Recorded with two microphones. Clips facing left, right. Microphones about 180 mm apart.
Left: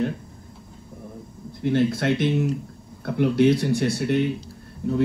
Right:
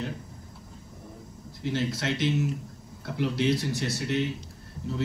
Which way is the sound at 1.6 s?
55° left (ahead or behind).